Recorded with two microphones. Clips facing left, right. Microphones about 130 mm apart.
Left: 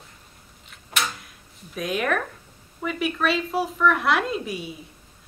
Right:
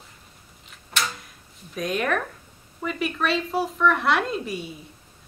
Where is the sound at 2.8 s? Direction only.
Centre (ahead or behind).